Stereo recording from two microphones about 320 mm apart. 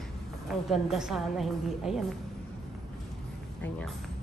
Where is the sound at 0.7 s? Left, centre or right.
Centre.